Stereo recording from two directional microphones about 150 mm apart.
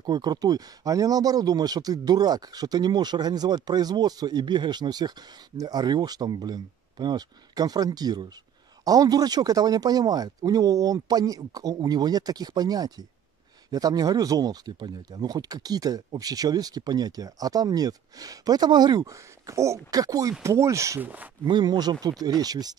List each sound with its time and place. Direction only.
0.0 s speech: 25° right (ahead or behind); by 21.3 s 10° right (ahead or behind)
21.5 s speech: 30° right (ahead or behind)